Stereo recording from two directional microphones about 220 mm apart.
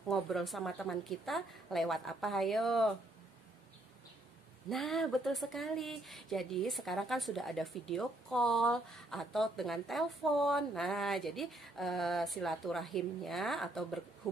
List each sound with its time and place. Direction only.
0.1 s speech: centre (ahead or behind)
4.6 s speech: centre (ahead or behind)